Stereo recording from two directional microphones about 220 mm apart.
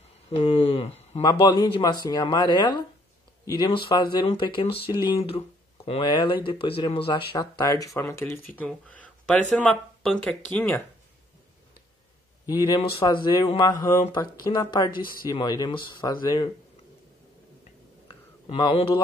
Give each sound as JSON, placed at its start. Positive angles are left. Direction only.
{"t": 0.3, "sound": "a sound", "side_deg": 25}
{"t": 1.2, "sound": "speech", "side_deg": 20}
{"t": 13.0, "sound": "speech", "side_deg": 20}
{"t": 14.9, "sound": "speech", "side_deg": 40}
{"t": 15.3, "sound": "speech", "side_deg": 15}
{"t": 18.5, "sound": "speech", "side_deg": 25}